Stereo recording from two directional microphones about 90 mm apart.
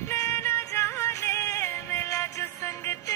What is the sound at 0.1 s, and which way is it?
Music, 35° left (ahead or behind).